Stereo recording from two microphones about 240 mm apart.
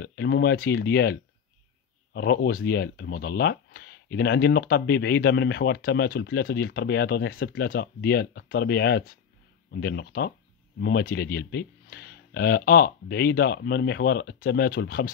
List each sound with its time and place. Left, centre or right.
0.0 s speech: left
2.1 s speech: left